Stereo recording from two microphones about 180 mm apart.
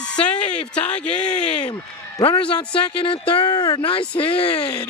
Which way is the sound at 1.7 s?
25° left (ahead or behind).